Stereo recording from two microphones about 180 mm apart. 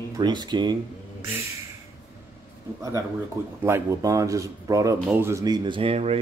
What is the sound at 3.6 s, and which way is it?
A man's voice, 15° right (ahead or behind).